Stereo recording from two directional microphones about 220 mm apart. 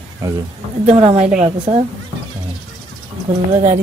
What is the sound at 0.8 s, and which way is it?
Speech, 30° right (ahead or behind).